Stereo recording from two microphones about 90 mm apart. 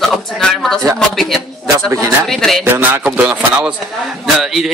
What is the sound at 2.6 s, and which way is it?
A man's voice, 20° right (ahead or behind).